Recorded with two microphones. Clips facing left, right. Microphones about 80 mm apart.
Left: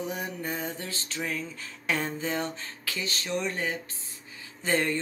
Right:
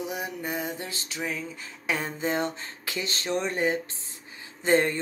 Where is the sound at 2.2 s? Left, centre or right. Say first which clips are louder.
Right 3 dB; right.